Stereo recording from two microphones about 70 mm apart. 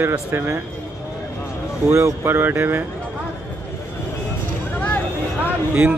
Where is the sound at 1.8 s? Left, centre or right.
Right.